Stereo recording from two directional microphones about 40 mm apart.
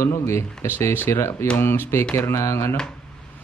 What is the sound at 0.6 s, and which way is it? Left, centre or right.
Speech, left.